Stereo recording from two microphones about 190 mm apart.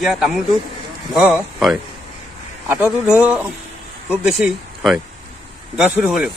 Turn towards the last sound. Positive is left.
turn(degrees=-5)  # may be behind; listen again after turning